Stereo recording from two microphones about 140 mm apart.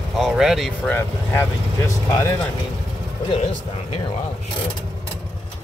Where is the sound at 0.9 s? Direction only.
15° left (ahead or behind).